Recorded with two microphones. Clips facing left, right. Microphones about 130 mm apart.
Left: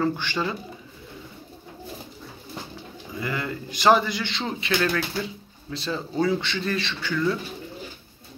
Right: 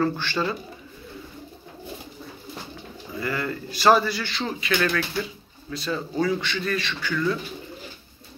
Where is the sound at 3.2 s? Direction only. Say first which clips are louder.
Right 1 dB; 20° left (ahead or behind).